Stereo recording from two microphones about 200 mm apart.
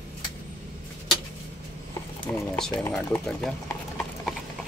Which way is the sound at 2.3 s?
10° left (ahead or behind).